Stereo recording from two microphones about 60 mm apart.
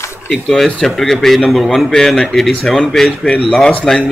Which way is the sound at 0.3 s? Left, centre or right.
Centre.